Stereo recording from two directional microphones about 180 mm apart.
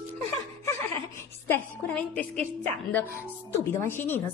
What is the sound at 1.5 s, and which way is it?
A woman's voice, 5° left (ahead or behind).